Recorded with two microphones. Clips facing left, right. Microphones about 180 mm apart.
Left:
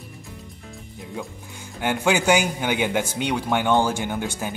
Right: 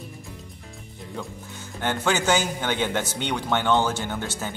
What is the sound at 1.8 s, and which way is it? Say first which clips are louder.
A man's voice: left 3 dB; 10° left (ahead or behind).